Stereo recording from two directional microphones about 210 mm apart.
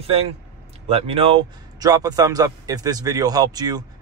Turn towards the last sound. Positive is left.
turn(degrees=-20)  # may be behind; listen again after turning